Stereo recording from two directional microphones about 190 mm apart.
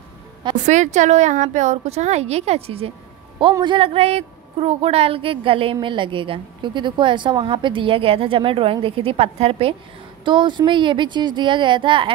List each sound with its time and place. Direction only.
0.7 s a woman's voice: 40° right (ahead or behind)